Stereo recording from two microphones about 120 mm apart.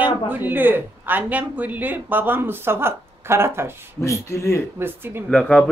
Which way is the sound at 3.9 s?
25° left (ahead or behind).